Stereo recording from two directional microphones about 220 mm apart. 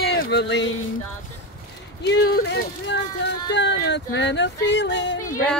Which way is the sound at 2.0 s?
45° left (ahead or behind).